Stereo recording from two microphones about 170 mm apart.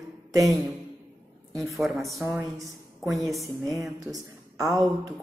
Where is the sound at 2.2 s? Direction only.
15° right (ahead or behind).